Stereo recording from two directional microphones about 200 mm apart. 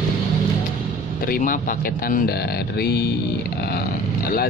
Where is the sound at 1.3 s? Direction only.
45° left (ahead or behind).